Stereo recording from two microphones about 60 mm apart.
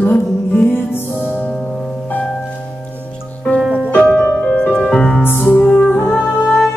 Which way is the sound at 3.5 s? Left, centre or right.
Left.